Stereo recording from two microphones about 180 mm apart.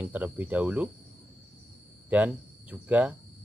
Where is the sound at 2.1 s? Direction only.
10° right (ahead or behind).